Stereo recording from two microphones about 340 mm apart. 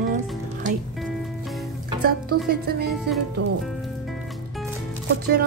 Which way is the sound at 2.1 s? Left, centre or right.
Right.